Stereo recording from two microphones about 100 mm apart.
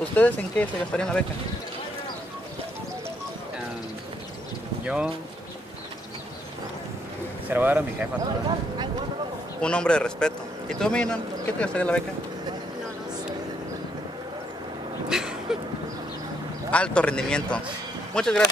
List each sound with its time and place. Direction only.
0.1 s a man's voice: 15° left (ahead or behind)
4.8 s speech: 10° right (ahead or behind)
7.4 s speech: 20° right (ahead or behind)
9.6 s a man's voice: 10° left (ahead or behind)
15.0 s a sound: 5° right (ahead or behind)
16.7 s a man's voice: 10° left (ahead or behind)